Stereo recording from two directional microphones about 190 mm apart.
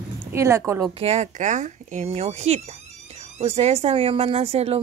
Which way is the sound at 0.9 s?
35° right (ahead or behind).